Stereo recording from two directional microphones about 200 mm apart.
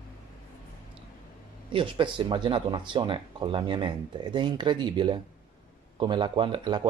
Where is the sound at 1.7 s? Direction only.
25° right (ahead or behind).